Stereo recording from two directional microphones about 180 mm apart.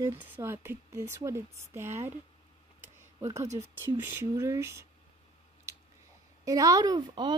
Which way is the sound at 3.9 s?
10° right (ahead or behind).